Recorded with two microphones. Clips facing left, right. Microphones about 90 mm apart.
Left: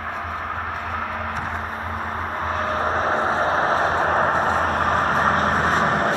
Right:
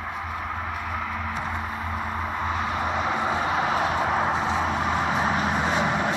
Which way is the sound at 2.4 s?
40° left (ahead or behind).